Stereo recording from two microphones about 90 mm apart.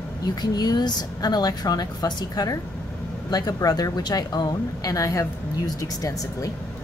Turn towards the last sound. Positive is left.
turn(degrees=40)  # may be behind; listen again after turning